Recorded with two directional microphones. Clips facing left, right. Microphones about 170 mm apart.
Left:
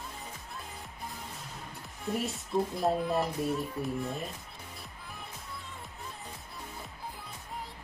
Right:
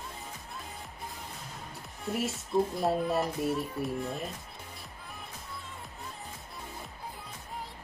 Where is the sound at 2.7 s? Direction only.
Centre (ahead or behind).